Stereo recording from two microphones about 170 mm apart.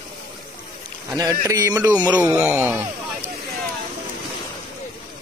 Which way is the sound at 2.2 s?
10° right (ahead or behind).